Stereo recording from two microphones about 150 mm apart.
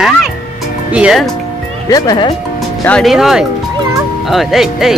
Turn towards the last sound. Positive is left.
turn(degrees=0)  # may be behind; listen again after turning